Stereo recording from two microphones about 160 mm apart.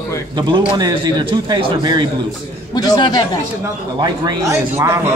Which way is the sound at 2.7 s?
25° left (ahead or behind).